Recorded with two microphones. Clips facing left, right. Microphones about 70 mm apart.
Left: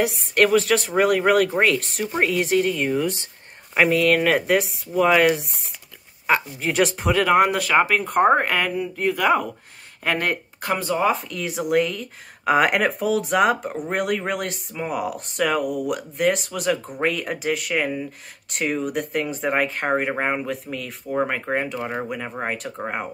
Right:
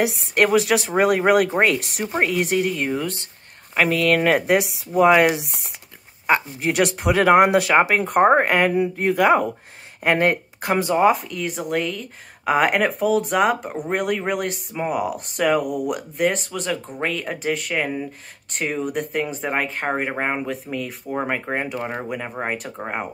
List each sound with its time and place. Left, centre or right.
0.3 s speech: centre
3.7 s speech: centre
4.2 s speech: centre
6.6 s speech: centre
7.2 s speech: right
10.1 s speech: centre
10.7 s speech: right
11.1 s speech: centre